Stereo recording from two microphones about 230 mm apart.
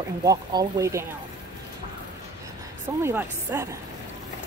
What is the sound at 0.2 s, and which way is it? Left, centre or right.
Speech, centre.